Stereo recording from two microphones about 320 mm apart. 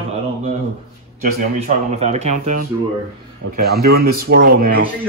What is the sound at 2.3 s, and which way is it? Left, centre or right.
Speech, right.